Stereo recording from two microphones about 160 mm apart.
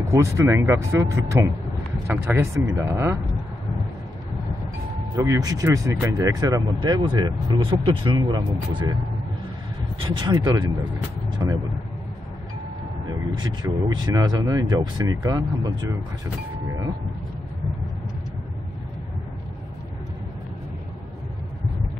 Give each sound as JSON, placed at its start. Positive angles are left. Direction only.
{"t": 0.1, "sound": "speech", "side_deg": -20}
{"t": 5.1, "sound": "speech", "side_deg": -20}
{"t": 9.9, "sound": "speech", "side_deg": -30}
{"t": 11.2, "sound": "vehicle", "side_deg": -25}
{"t": 13.0, "sound": "speech", "side_deg": -25}